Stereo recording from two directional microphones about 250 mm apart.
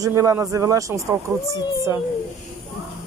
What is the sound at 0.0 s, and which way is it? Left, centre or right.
Speech, centre.